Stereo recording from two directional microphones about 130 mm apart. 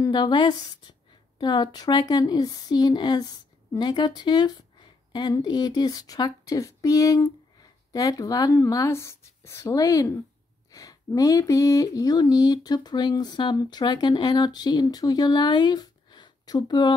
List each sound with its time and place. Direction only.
0.1 s speech: 35° left (ahead or behind)